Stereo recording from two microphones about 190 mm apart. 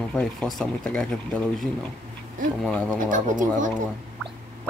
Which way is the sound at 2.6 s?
5° left (ahead or behind).